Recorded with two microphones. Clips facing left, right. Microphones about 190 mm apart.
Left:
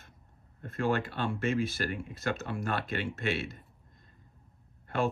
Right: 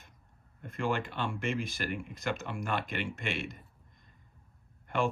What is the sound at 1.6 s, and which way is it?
Speech, 15° right (ahead or behind).